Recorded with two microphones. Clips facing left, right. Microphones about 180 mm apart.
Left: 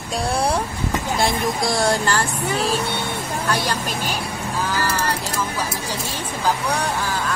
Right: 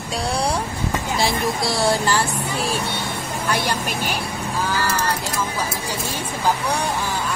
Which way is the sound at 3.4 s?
10° right (ahead or behind).